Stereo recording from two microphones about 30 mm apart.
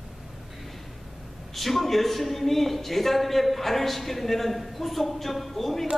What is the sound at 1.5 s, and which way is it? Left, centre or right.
A man's voice, centre.